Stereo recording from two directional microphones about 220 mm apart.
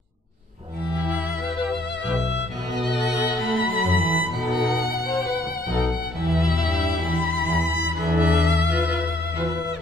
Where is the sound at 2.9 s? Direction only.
Centre (ahead or behind).